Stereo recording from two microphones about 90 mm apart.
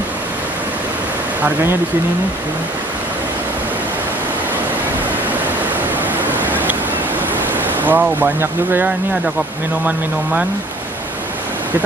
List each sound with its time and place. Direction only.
1.4 s speech: 25° right (ahead or behind)
6.4 s a sound: 20° right (ahead or behind)
7.5 s speech: 20° right (ahead or behind)